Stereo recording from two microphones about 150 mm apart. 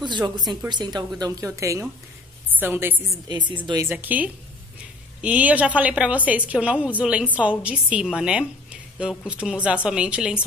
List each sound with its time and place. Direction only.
0.0 s a woman's voice: 30° right (ahead or behind); by 3.2 s 15° right (ahead or behind)
3.3 s speech: 30° right (ahead or behind)
3.8 s a woman's voice: 15° right (ahead or behind)